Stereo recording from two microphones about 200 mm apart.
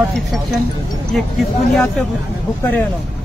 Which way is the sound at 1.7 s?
Centre (ahead or behind).